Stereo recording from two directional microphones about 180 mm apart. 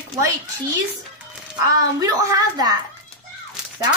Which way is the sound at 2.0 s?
20° right (ahead or behind).